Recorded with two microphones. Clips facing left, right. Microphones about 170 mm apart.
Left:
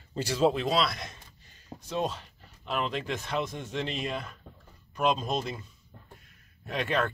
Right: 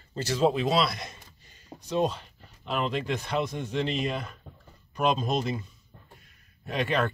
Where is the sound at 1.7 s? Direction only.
5° right (ahead or behind).